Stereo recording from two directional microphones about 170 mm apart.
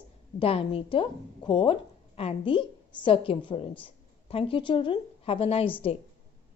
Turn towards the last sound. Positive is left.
turn(degrees=35)  # may be behind; listen again after turning